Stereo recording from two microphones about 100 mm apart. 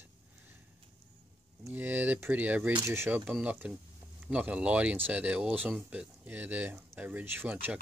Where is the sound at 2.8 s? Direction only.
25° right (ahead or behind).